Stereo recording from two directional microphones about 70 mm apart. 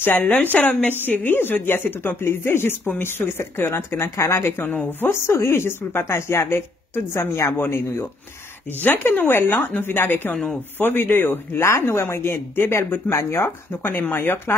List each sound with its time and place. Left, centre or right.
0.3 s a woman's voice: left
10.3 s speech: centre
10.8 s speech: left